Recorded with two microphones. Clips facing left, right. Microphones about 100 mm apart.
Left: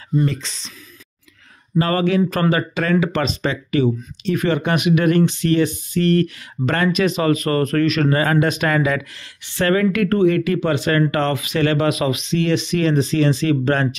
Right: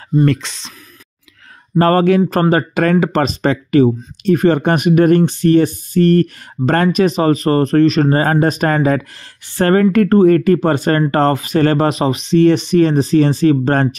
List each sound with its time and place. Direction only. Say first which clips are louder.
0.2 s speech: right 7 dB; 65° right (ahead or behind)
1.8 s speech: right 6 dB; 45° right (ahead or behind)